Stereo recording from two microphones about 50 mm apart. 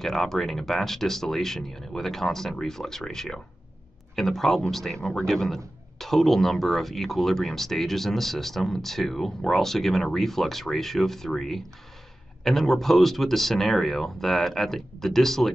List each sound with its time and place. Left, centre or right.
0.0 s speech: centre
4.9 s speech: centre
5.2 s a man's voice: centre